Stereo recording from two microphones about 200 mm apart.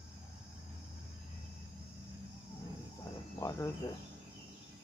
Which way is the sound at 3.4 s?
15° left (ahead or behind).